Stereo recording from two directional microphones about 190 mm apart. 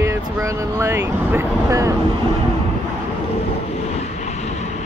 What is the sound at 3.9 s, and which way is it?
Vehicle, 35° left (ahead or behind).